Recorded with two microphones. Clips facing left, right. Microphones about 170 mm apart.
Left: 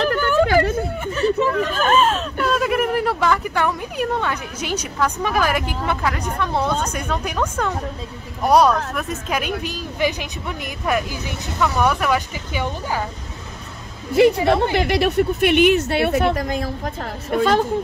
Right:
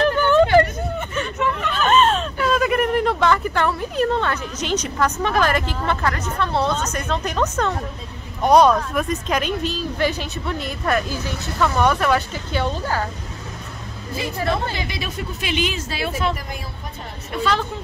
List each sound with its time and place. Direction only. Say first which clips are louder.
1.1 s hubbub: left 8 dB; 35° left (ahead or behind)
1.8 s speech: right 2 dB; 5° left (ahead or behind)
14.1 s speech: left 9 dB; 75° left (ahead or behind)
17.3 s speech: left 5 dB; 45° left (ahead or behind)